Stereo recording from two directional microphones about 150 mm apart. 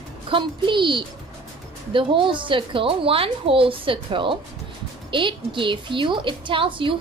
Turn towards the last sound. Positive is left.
turn(degrees=-35)  # may be behind; listen again after turning